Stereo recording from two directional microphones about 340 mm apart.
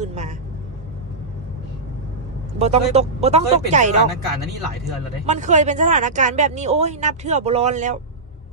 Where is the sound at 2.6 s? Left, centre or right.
Centre.